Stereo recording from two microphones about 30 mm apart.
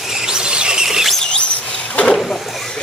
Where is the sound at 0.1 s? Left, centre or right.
Right.